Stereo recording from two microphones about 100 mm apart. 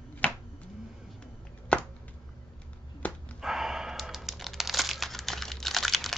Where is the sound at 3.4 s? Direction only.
5° right (ahead or behind).